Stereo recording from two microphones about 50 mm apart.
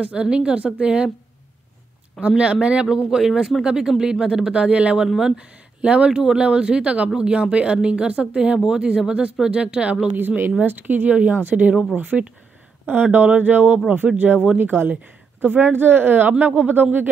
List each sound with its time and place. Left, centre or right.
0.0 s speech: right
2.1 s speech: right
3.1 s speech: centre
10.1 s speech: right
11.1 s speech: right
14.6 s speech: right